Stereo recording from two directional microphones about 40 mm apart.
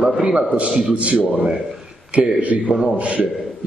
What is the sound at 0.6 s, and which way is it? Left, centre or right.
A man's voice, right.